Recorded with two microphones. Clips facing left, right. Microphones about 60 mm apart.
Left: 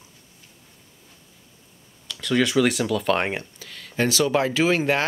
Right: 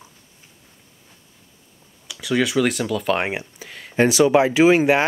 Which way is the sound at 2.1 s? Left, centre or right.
Centre.